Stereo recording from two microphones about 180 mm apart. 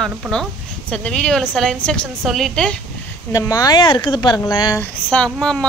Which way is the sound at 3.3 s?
20° left (ahead or behind).